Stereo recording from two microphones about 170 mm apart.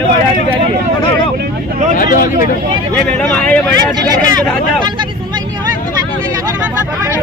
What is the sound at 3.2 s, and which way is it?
Speech, 5° left (ahead or behind).